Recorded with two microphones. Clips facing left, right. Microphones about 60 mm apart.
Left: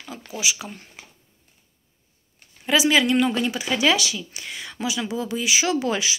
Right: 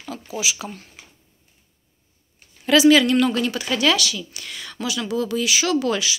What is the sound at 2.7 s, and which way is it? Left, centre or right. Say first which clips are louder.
Speech: right 5 dB; centre.